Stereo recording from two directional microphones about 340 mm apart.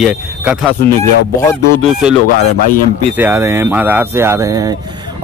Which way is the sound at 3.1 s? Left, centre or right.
Centre.